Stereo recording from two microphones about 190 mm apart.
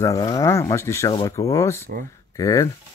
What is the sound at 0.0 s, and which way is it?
Speech, 20° left (ahead or behind).